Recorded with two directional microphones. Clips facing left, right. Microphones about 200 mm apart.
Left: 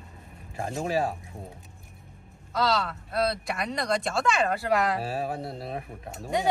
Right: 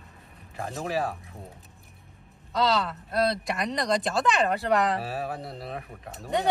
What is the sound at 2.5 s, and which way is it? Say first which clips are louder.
Speech: right 1 dB; centre (ahead or behind).